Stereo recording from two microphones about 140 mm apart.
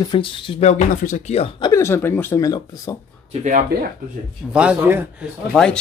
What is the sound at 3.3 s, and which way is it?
Speech, 65° right (ahead or behind).